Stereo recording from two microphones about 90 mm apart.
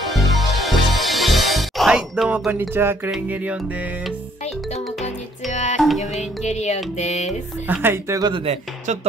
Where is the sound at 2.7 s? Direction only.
25° right (ahead or behind).